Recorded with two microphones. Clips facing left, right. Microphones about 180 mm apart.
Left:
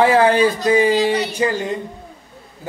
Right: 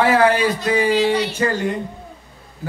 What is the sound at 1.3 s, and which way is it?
Speech, 15° left (ahead or behind).